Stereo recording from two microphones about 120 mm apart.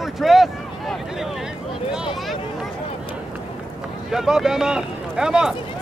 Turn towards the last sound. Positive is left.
turn(degrees=-5)  # may be behind; listen again after turning